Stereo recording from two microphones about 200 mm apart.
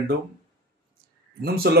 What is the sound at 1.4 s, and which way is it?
Speech, 50° right (ahead or behind).